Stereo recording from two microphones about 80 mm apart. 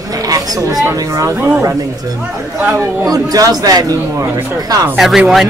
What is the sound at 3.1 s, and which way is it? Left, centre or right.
A man's voice, right.